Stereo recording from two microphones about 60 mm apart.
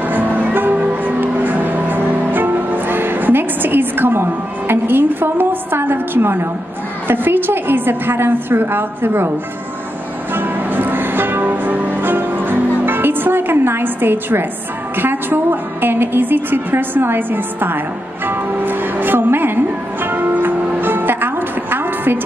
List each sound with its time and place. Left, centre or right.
0.1 s music: right
7.1 s a woman's voice: right
10.3 s music: right
15.0 s a woman's voice: right
18.2 s music: right